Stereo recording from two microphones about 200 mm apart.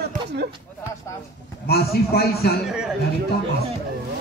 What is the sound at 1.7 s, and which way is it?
Speech, 50° left (ahead or behind).